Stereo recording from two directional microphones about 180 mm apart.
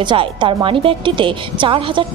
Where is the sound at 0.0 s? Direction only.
25° right (ahead or behind).